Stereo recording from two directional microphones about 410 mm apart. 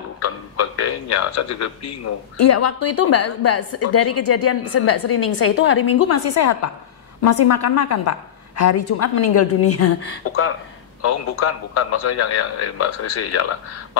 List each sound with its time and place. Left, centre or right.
0.2 s a sound: left
1.1 s speech: left
11.7 s speech: left